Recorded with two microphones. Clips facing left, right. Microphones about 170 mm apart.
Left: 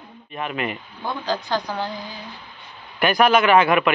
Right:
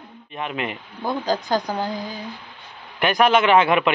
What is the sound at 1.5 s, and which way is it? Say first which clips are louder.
Speech: right 2 dB; 45° right (ahead or behind).